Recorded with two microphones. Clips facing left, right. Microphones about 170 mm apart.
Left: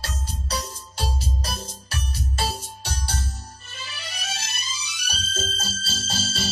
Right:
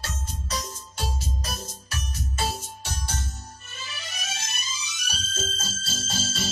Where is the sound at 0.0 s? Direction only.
35° left (ahead or behind).